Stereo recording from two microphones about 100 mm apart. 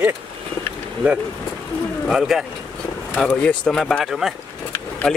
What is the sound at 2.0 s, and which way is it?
Speech, 5° right (ahead or behind).